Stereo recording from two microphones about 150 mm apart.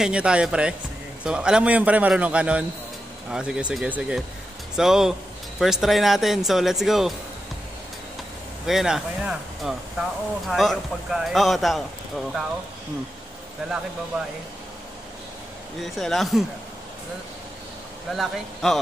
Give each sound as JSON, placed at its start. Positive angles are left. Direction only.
{"t": 0.0, "sound": "a man's voice", "side_deg": -5}
{"t": 8.6, "sound": "speech", "side_deg": 0}
{"t": 13.6, "sound": "speech", "side_deg": -5}
{"t": 15.8, "sound": "speech", "side_deg": 0}
{"t": 18.1, "sound": "speech", "side_deg": 0}